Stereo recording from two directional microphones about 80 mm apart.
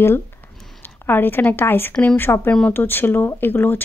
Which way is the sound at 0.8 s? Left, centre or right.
Left.